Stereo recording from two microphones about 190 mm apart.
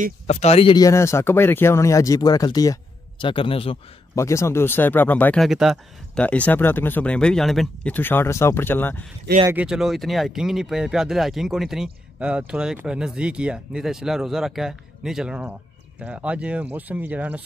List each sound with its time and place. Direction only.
0.3 s speech: 35° left (ahead or behind)
4.1 s speech: 15° left (ahead or behind)
9.5 s speech: 5° right (ahead or behind)